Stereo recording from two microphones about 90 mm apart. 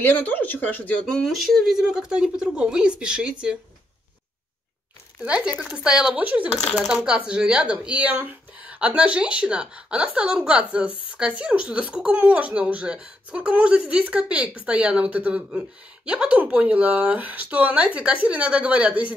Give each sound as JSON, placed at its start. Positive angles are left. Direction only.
{"t": 0.0, "sound": "speech", "side_deg": 20}
{"t": 1.0, "sound": "speech", "side_deg": 5}
{"t": 5.2, "sound": "speech", "side_deg": -10}